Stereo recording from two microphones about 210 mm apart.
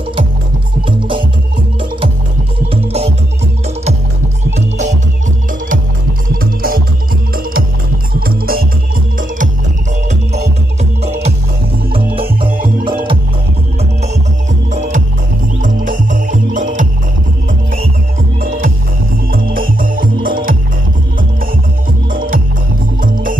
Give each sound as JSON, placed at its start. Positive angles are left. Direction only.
{"t": 0.8, "sound": "music", "side_deg": -25}
{"t": 2.7, "sound": "music", "side_deg": -30}
{"t": 4.6, "sound": "music", "side_deg": -35}
{"t": 6.4, "sound": "music", "side_deg": -45}
{"t": 14.7, "sound": "music", "side_deg": -35}
{"t": 18.4, "sound": "music", "side_deg": -40}
{"t": 22.1, "sound": "music", "side_deg": -40}